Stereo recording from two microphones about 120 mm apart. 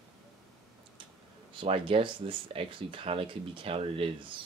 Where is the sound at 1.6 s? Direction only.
50° right (ahead or behind).